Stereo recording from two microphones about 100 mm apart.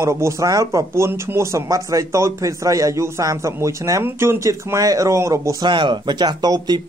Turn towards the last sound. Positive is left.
turn(degrees=-45)  # may be behind; listen again after turning